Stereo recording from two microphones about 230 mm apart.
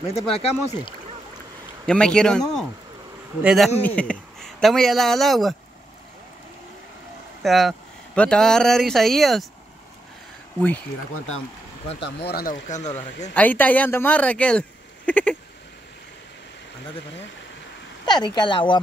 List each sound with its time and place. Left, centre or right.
0.0 s speech: left
1.9 s speech: centre
7.4 s speech: centre
12.3 s speech: left
13.3 s speech: centre
18.0 s speech: centre